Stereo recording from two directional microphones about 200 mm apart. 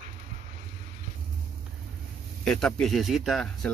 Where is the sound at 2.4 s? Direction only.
5° left (ahead or behind).